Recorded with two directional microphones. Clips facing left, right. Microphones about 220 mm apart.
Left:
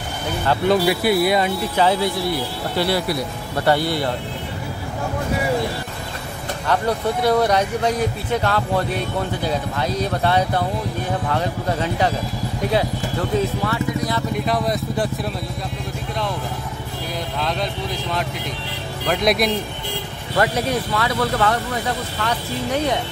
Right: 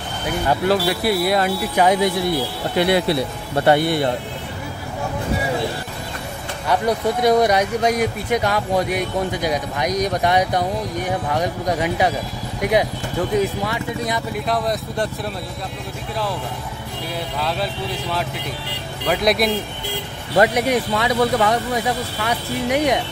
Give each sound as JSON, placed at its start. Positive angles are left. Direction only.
{"t": 0.7, "sound": "speech", "side_deg": 0}
{"t": 1.8, "sound": "speech", "side_deg": -15}
{"t": 6.7, "sound": "speech", "side_deg": -15}
{"t": 14.3, "sound": "speech", "side_deg": 0}
{"t": 17.4, "sound": "speech", "side_deg": -5}
{"t": 19.0, "sound": "speech", "side_deg": 0}
{"t": 20.3, "sound": "speech", "side_deg": -15}